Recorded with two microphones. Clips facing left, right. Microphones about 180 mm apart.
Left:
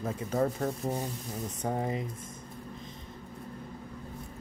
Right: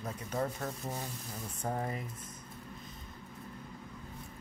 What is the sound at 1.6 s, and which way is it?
Speech, 20° left (ahead or behind).